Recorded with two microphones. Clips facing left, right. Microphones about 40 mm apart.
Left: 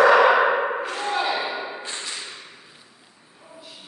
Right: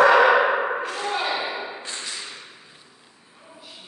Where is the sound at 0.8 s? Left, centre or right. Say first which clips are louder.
Left 1 dB; centre.